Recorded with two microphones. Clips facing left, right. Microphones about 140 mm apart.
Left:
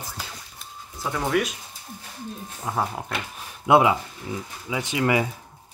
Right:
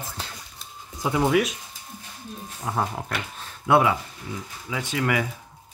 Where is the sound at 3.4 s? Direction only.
20° left (ahead or behind).